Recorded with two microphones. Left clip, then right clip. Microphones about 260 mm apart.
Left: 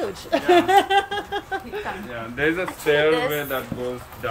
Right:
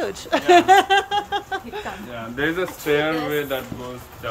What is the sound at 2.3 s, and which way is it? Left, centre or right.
Speech, centre.